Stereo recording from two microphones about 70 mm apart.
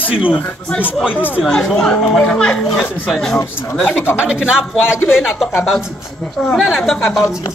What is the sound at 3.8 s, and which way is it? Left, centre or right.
Speech, left.